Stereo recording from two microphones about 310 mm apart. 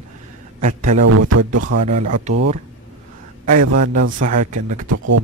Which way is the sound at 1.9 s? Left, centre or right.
Right.